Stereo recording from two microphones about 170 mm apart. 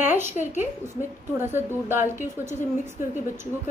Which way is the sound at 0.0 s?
10° right (ahead or behind).